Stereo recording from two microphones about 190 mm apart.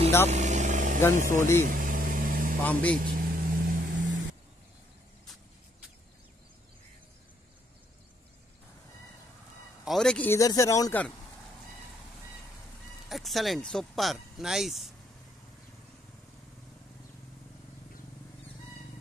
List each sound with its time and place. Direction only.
0.3 s vehicle: 40° right (ahead or behind)
1.1 s speech: 45° right (ahead or behind)
1.6 s vehicle: 45° right (ahead or behind)
2.6 s speech: 10° left (ahead or behind)
3.0 s vehicle: 45° right (ahead or behind)
9.8 s speech: 5° left (ahead or behind)
13.1 s speech: centre (ahead or behind)